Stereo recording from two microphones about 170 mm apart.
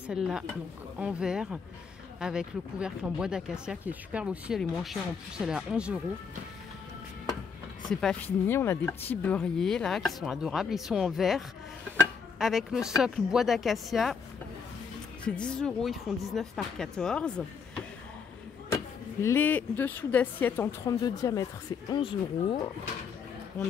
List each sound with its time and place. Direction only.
0.1 s speech: 5° right (ahead or behind)
7.9 s speech: 5° left (ahead or behind)
15.2 s speech: 5° left (ahead or behind)
19.2 s speech: 10° left (ahead or behind); by 22.7 s 30° left (ahead or behind)